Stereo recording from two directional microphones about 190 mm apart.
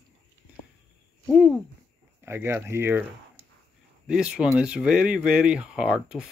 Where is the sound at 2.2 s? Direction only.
10° right (ahead or behind).